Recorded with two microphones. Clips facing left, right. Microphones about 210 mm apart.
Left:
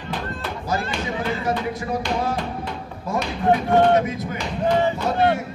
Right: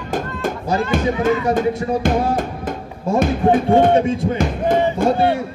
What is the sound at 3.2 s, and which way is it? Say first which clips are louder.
Speech: right 4 dB; 50° right (ahead or behind).